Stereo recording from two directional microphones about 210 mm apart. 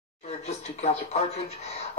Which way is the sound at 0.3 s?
30° left (ahead or behind).